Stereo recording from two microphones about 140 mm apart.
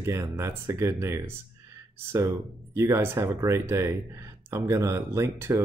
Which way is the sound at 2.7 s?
20° right (ahead or behind).